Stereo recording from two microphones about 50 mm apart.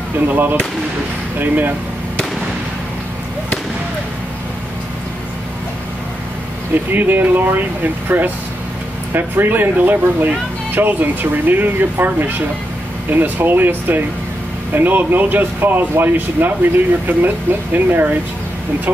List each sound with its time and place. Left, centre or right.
1.4 s speech: right
6.9 s speech: right